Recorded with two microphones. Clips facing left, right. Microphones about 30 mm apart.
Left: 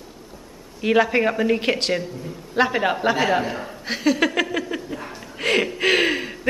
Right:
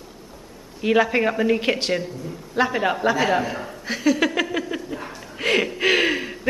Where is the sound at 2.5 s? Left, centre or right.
Centre.